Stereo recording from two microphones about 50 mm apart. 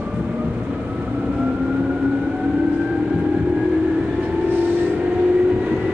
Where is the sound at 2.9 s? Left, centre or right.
Centre.